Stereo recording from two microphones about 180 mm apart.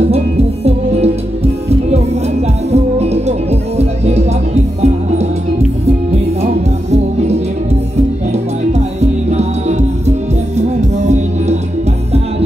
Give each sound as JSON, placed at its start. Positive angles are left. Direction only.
{"t": 0.1, "sound": "music", "side_deg": -35}
{"t": 6.4, "sound": "music", "side_deg": -35}